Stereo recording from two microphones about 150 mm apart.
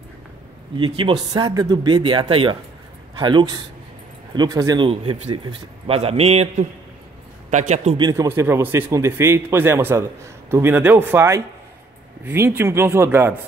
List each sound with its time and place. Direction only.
0.7 s speech: 35° right (ahead or behind)
4.8 s speech: 35° right (ahead or behind)
7.5 s a man's voice: 50° right (ahead or behind)
8.0 s a man's voice: 20° right (ahead or behind)